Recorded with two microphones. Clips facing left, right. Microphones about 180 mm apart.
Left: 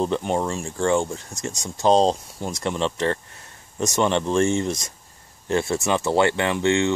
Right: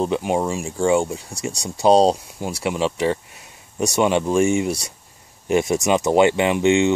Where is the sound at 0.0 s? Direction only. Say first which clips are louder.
Right 2 dB; 5° right (ahead or behind).